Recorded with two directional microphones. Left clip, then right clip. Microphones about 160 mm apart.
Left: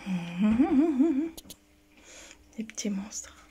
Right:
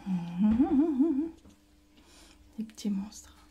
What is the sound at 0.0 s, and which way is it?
Humming, centre (ahead or behind).